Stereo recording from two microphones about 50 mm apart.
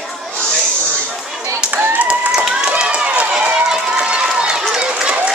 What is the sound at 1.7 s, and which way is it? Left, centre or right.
Speech, right.